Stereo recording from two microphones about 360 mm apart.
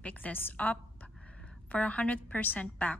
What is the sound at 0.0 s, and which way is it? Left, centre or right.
A woman's voice, centre.